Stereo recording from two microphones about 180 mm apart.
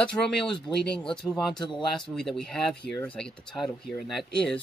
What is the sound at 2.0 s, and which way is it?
Speech, 5° left (ahead or behind).